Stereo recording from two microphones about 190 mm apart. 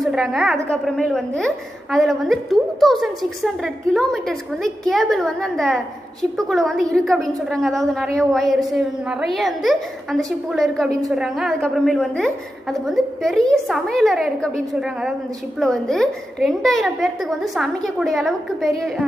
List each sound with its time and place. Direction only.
0.0 s a woman's voice: centre (ahead or behind)